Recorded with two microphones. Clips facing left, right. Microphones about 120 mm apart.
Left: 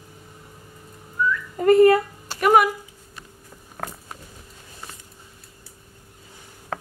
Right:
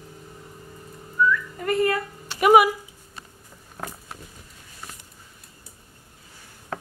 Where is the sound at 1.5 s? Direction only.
35° left (ahead or behind).